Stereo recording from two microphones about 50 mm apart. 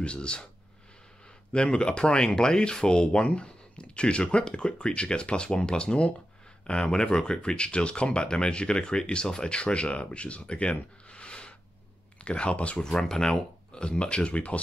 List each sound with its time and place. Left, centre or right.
0.0 s speech: left
1.5 s speech: centre
12.8 s speech: centre; by 14.6 s left